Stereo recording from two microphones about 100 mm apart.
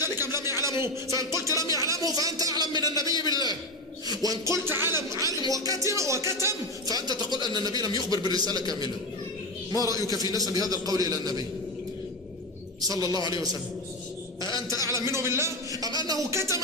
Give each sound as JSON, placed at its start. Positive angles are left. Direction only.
{"t": 0.0, "sound": "a sound", "side_deg": -25}
{"t": 0.7, "sound": "speech", "side_deg": -30}
{"t": 4.1, "sound": "a sound", "side_deg": -40}
{"t": 4.6, "sound": "a sound", "side_deg": -25}
{"t": 8.1, "sound": "a man's voice", "side_deg": -40}
{"t": 9.9, "sound": "a man's voice", "side_deg": 40}
{"t": 10.5, "sound": "a man's voice", "side_deg": -40}
{"t": 12.8, "sound": "a man's voice", "side_deg": -40}
{"t": 14.9, "sound": "a man's voice", "side_deg": -30}